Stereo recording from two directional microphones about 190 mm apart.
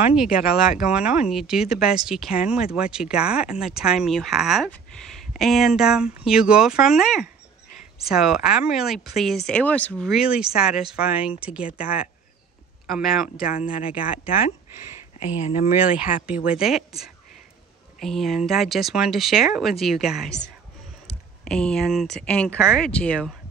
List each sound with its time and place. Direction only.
0.0 s speech: 5° right (ahead or behind)
13.7 s speech: 45° left (ahead or behind)
15.1 s speech: 35° left (ahead or behind)
16.4 s speech: 5° right (ahead or behind)
18.0 s speech: centre (ahead or behind)